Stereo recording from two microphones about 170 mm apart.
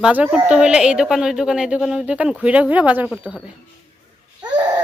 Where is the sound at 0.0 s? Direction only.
5° right (ahead or behind).